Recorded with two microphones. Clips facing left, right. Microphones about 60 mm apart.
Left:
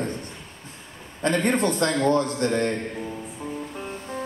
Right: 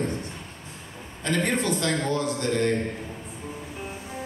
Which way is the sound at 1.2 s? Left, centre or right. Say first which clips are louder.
Left 4 dB; left.